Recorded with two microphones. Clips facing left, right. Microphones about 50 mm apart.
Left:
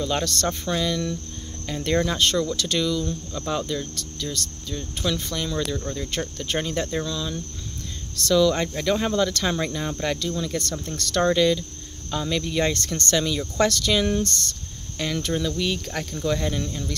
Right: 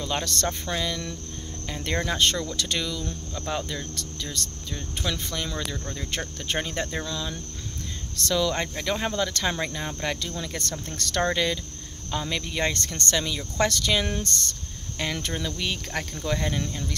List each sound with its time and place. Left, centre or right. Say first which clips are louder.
0.0 s cricket: left 3 dB; centre
1.7 s speech: left 5 dB; centre
8.7 s cricket: left 5 dB; centre
10.3 s speech: left 5 dB; right
12.9 s cricket: left 4 dB; centre
13.6 s speech: left 2 dB; right